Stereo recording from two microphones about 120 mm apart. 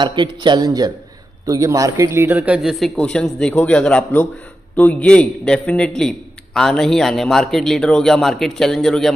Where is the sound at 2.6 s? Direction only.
Centre (ahead or behind).